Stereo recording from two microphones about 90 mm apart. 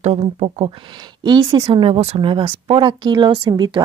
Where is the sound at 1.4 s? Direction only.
75° right (ahead or behind).